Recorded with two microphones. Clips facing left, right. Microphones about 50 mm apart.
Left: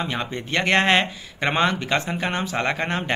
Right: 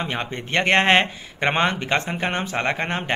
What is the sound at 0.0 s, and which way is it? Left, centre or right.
Speech, right.